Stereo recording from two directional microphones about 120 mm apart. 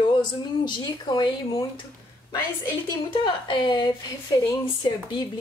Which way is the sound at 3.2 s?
45° left (ahead or behind).